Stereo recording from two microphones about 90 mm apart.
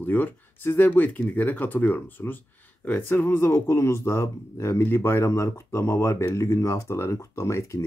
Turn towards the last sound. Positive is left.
turn(degrees=30)  # may be behind; listen again after turning